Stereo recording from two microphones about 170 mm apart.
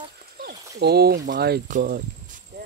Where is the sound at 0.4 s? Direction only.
70° right (ahead or behind).